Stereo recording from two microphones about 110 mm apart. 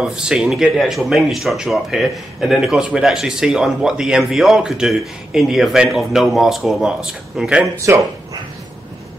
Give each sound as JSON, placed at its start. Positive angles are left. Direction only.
{"t": 0.0, "sound": "speech", "side_deg": -5}
{"t": 7.8, "sound": "speech", "side_deg": -30}